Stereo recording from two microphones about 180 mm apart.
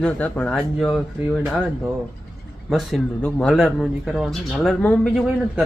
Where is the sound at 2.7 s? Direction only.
Centre (ahead or behind).